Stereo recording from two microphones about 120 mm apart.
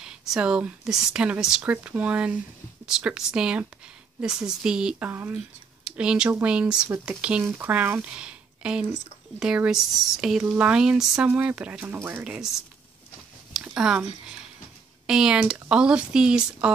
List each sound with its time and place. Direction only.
0.0 s speech: 5° right (ahead or behind)
12.3 s speech: 5° right (ahead or behind)
13.5 s a sound: 5° right (ahead or behind)
15.0 s speech: 5° right (ahead or behind)